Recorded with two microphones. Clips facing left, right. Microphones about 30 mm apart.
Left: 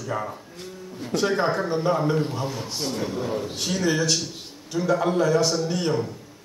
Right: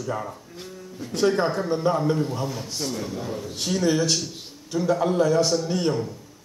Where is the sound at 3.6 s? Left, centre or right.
Centre.